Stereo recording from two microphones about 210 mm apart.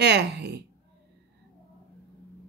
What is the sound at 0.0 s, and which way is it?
Speech, 55° right (ahead or behind).